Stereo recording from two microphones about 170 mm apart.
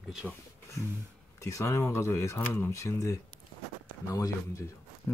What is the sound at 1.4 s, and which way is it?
Speech, 20° left (ahead or behind).